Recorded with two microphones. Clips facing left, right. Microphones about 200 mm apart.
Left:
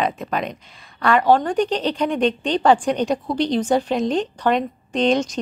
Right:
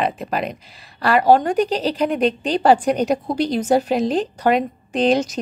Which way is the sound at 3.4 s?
5° right (ahead or behind).